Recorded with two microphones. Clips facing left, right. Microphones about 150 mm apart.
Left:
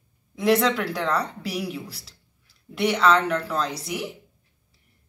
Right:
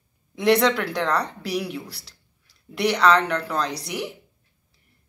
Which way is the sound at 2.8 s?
5° left (ahead or behind).